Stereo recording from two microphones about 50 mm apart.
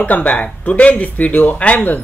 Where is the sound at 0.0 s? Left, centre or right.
Left.